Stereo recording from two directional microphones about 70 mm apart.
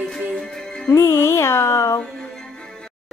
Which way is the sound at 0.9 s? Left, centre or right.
Left.